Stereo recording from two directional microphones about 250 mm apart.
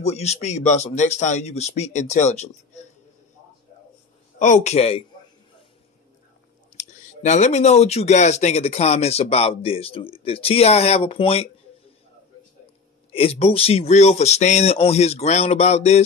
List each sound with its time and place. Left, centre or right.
0.0 s speech: left
4.4 s speech: left
6.8 s speech: left
13.1 s speech: left